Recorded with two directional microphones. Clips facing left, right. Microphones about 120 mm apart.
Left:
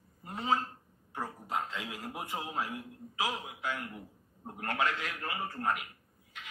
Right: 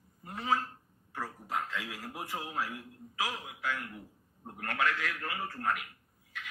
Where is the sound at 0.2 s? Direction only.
25° left (ahead or behind).